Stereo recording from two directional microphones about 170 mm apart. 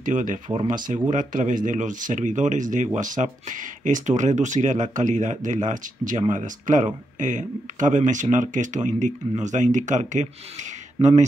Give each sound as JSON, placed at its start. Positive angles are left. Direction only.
{"t": 0.0, "sound": "speech", "side_deg": -50}